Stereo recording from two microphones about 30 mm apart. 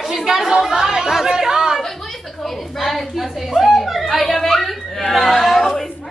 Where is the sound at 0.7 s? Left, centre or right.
Right.